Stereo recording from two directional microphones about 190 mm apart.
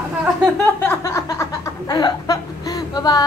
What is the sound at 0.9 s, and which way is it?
Chuckle, 15° left (ahead or behind).